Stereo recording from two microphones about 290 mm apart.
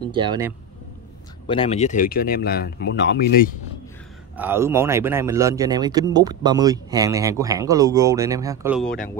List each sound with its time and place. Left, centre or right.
0.1 s speech: centre
1.5 s speech: centre
4.4 s speech: centre